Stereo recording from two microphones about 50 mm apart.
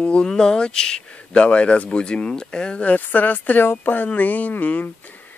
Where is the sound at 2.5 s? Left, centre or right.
Left.